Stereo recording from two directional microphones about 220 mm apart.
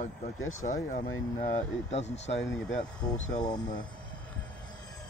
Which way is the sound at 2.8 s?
20° left (ahead or behind).